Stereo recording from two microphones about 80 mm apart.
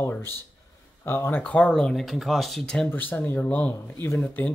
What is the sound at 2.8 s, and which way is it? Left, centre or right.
Speech, left.